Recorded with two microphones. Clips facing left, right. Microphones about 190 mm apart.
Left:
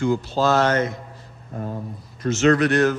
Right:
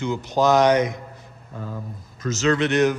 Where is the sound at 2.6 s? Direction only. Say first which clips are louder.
Left 1 dB; 20° right (ahead or behind).